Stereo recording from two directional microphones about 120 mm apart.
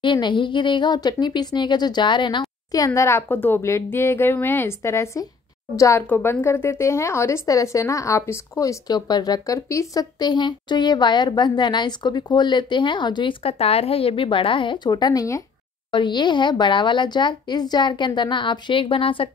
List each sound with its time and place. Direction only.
0.0 s speech: 40° left (ahead or behind)
15.9 s speech: 40° left (ahead or behind)